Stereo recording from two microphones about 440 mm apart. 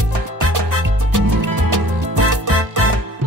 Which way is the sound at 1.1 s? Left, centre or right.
Right.